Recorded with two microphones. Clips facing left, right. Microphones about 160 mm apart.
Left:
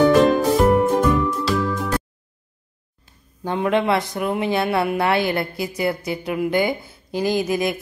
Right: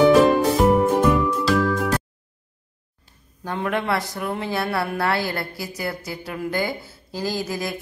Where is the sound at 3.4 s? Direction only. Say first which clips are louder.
Left 5 dB; 20° left (ahead or behind).